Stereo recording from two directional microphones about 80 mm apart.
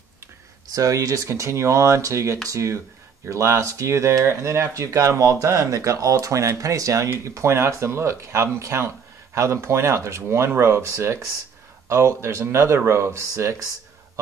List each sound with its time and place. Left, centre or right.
0.7 s speech: right